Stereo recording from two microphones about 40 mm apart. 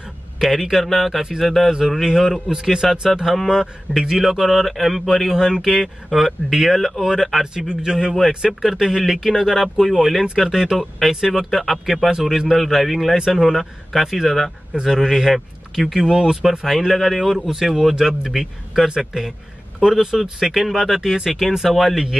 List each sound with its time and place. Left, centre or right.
0.4 s speech: centre
7.5 s speech: centre
8.4 s speech: centre
12.1 s speech: centre
16.6 s speech: centre